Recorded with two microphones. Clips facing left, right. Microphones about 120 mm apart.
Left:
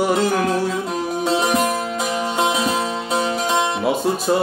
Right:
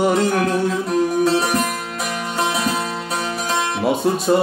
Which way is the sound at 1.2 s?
15° left (ahead or behind).